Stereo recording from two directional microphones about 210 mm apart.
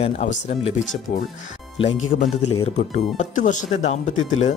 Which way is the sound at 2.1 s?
40° left (ahead or behind).